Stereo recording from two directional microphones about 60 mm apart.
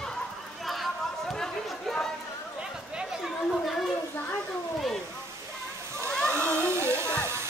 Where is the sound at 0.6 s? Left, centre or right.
Centre.